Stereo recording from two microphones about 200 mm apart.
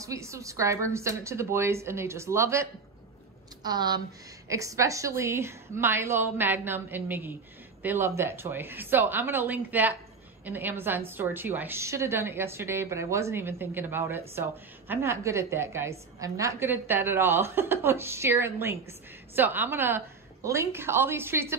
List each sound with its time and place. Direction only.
0.0 s a woman's voice: 15° right (ahead or behind)